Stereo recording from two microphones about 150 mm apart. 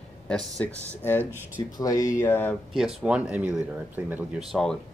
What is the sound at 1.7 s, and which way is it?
Speech, 25° left (ahead or behind).